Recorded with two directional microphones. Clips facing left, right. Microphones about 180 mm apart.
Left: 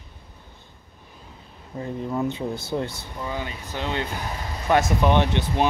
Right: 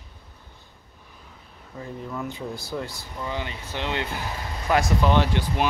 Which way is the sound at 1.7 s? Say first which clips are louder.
Left 6 dB; 25° left (ahead or behind).